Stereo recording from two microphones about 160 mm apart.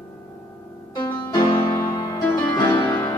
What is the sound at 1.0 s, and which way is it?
Music, 30° left (ahead or behind).